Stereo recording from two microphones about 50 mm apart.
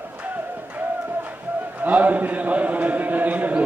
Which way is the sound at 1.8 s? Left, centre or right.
Right.